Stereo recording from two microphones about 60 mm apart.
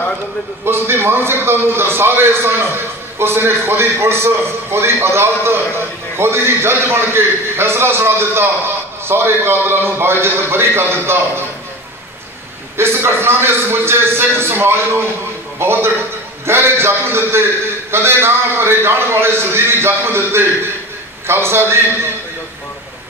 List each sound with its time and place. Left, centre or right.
0.7 s a man's voice: right
12.7 s a man's voice: right